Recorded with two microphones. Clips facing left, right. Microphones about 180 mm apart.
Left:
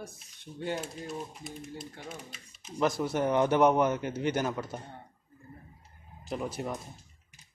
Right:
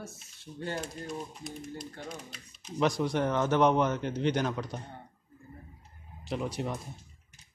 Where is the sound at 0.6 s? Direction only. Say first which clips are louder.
Left 1 dB; 5° left (ahead or behind).